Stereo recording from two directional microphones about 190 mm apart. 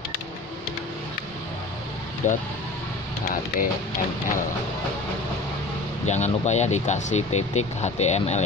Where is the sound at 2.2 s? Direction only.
40° left (ahead or behind).